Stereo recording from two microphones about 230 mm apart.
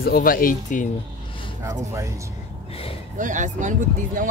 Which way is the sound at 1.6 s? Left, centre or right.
Centre.